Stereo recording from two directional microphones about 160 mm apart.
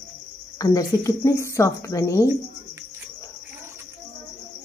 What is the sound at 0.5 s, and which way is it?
Speech, 20° left (ahead or behind).